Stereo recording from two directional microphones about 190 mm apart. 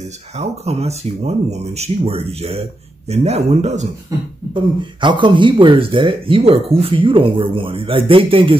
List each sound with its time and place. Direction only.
0.4 s speech: 35° right (ahead or behind)
5.0 s speech: 25° right (ahead or behind)